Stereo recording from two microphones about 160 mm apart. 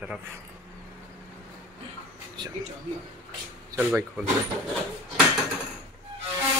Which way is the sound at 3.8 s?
10° right (ahead or behind).